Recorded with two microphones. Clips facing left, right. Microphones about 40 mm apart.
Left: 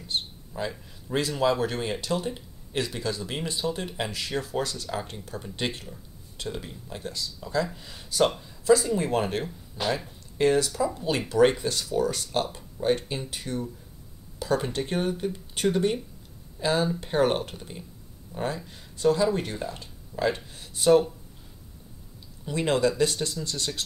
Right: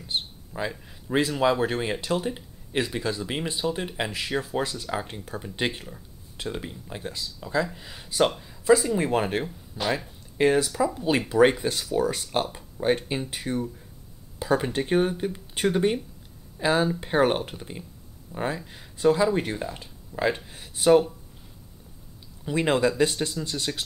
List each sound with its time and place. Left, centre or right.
0.0 s speech: centre
9.4 s speech: centre
10.3 s speech: centre
10.7 s speech: centre
11.1 s speech: centre
22.4 s speech: centre